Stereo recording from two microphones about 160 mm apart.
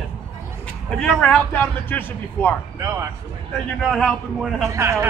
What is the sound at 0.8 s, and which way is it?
A man's voice, 5° left (ahead or behind).